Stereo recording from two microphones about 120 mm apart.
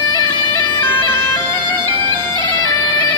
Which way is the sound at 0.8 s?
20° left (ahead or behind).